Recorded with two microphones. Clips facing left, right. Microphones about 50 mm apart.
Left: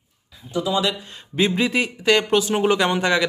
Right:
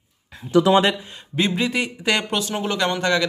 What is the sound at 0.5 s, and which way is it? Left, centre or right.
Speech, right.